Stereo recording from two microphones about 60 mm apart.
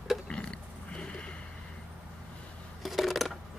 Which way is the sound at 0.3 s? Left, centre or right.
Centre.